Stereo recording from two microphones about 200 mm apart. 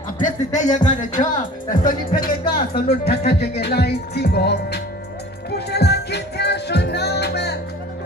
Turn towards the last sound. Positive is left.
turn(degrees=55)  # may be behind; listen again after turning